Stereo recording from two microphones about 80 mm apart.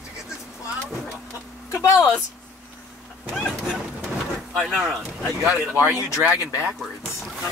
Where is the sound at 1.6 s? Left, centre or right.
Left.